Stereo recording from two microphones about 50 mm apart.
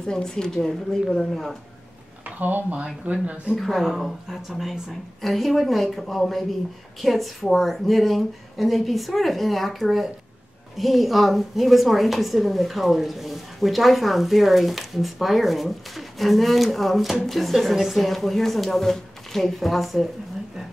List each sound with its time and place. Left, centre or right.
0.0 s speech: centre
2.2 s speech: right
3.5 s a woman's voice: centre